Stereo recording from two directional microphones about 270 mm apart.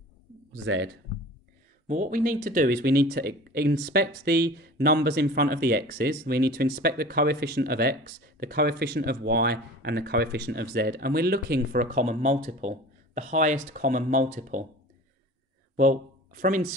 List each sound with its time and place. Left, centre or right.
0.7 s speech: right
1.9 s speech: right
15.7 s speech: right